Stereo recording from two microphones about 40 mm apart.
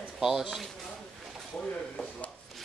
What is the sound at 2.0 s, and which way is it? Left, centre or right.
Speech, left.